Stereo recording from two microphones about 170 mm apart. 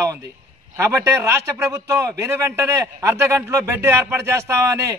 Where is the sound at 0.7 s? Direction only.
15° right (ahead or behind).